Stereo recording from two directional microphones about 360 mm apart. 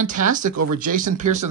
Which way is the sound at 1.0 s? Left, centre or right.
Right.